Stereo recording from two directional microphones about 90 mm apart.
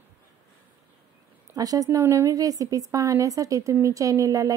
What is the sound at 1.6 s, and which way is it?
Speech, 40° right (ahead or behind).